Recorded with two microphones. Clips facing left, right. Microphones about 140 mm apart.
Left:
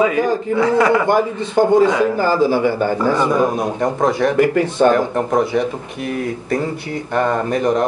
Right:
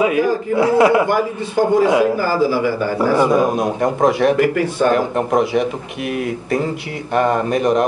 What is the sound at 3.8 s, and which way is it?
Speech, 20° right (ahead or behind).